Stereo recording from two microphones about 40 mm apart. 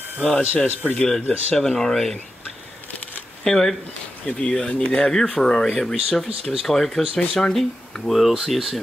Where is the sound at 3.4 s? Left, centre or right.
Centre.